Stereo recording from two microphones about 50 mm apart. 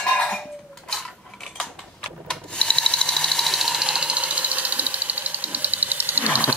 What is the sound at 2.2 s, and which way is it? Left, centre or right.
Sewing machine, centre.